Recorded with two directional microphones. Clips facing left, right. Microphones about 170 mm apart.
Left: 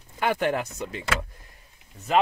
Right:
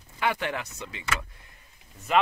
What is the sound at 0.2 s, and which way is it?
Speech, 45° left (ahead or behind).